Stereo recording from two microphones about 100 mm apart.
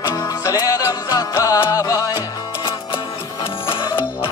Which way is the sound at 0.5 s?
35° left (ahead or behind).